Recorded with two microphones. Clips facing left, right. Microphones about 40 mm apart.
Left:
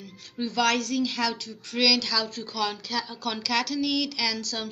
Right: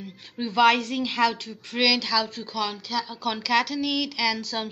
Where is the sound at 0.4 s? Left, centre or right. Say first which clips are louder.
Right 5 dB; right.